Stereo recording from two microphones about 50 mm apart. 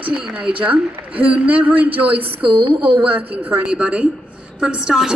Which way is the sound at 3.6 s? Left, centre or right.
Right.